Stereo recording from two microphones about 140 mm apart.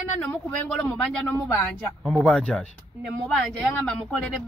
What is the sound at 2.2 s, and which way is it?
Speech, 5° left (ahead or behind).